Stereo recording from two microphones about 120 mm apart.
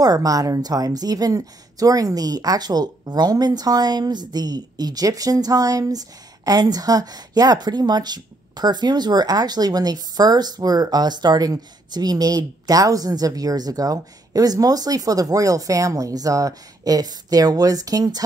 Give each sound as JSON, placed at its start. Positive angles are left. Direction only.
{"t": 0.0, "sound": "a woman's voice", "side_deg": -30}